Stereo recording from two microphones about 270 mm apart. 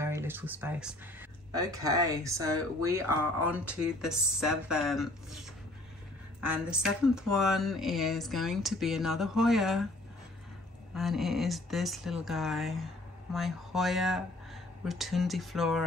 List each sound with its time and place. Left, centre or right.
0.0 s speech: centre
11.0 s speech: centre